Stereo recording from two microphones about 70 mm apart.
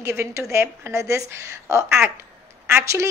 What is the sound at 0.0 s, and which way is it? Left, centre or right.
A woman's voice, right.